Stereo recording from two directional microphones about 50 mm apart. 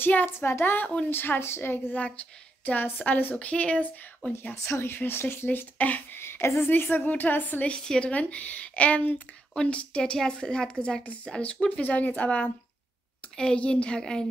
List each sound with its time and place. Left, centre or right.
0.0 s speech: left
0.5 s speech: left
1.1 s a woman's voice: left
2.0 s a woman's voice: left
3.3 s a woman's voice: left
4.3 s a woman's voice: left
4.6 s speech: left
4.9 s speech: left
5.8 s a woman's voice: left
6.1 s a woman's voice: left
6.7 s a woman's voice: left
7.6 s a woman's voice: centre
9.5 s a woman's voice: centre